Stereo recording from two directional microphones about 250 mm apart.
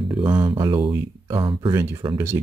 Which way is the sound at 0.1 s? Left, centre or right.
Centre.